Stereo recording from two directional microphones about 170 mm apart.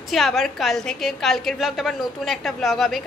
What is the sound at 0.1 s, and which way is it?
A woman's voice, centre (ahead or behind).